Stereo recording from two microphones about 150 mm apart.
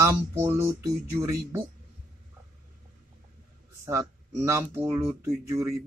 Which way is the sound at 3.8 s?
20° right (ahead or behind).